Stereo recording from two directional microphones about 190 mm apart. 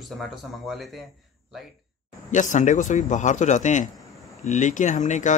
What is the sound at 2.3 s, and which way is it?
Speech, 40° left (ahead or behind).